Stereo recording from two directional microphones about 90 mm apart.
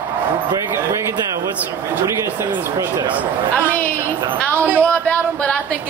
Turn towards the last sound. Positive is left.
turn(degrees=-25)  # may be behind; listen again after turning